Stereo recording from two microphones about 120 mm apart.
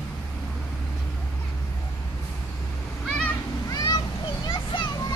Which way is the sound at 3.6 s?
30° left (ahead or behind).